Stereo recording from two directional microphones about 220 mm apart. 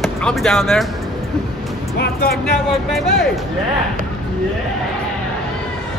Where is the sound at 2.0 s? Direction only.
45° left (ahead or behind).